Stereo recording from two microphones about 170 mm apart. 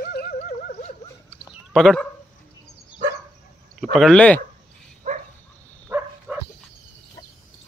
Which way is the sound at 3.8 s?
Centre (ahead or behind).